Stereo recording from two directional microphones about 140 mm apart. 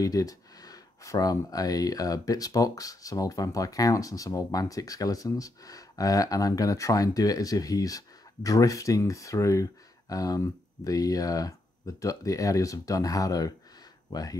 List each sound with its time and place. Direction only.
0.0 s speech: 25° left (ahead or behind)